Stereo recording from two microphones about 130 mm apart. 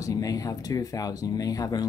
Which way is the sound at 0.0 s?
25° left (ahead or behind).